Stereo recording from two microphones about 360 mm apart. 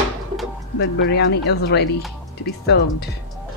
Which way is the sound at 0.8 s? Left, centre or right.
Left.